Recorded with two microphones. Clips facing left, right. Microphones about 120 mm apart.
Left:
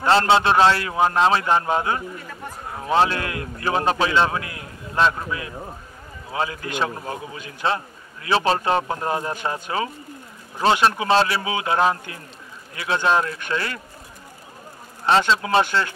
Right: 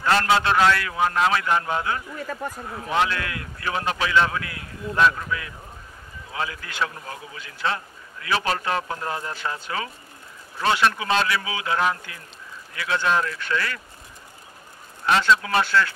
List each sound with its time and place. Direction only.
0.0 s a man's voice: 25° left (ahead or behind)
15.0 s a man's voice: 30° left (ahead or behind)